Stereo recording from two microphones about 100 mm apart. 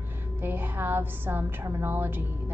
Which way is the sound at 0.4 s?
20° right (ahead or behind).